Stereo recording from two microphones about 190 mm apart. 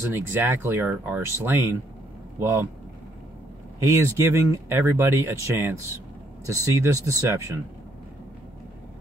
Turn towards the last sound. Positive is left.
turn(degrees=-15)  # may be behind; listen again after turning